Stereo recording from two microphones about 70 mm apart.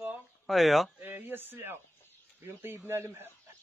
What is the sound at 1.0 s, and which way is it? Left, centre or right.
Speech, right.